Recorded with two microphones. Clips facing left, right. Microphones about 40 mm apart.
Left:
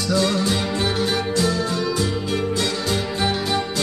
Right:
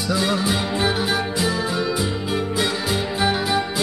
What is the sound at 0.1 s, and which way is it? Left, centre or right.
Music, centre.